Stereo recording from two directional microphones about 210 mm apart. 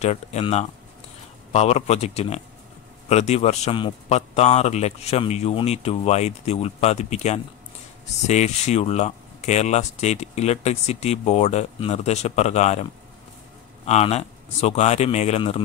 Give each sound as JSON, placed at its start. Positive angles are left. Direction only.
{"t": 0.0, "sound": "speech", "side_deg": 30}
{"t": 13.8, "sound": "speech", "side_deg": 30}